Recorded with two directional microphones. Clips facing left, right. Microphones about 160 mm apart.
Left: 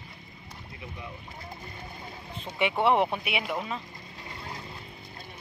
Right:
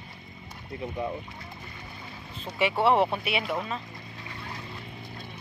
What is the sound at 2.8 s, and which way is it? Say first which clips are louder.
Speech: right 1 dB; 15° left (ahead or behind).